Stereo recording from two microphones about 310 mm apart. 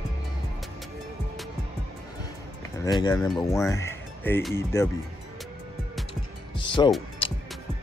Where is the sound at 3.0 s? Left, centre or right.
Centre.